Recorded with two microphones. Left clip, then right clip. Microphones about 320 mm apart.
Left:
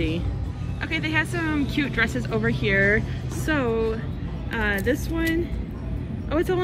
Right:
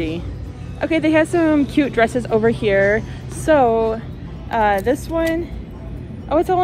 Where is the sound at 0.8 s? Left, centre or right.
Centre.